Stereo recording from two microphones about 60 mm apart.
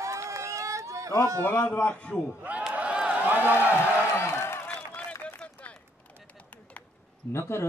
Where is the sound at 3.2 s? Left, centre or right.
Right.